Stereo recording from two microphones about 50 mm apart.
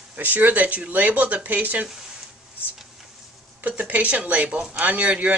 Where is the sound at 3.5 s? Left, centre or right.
Right.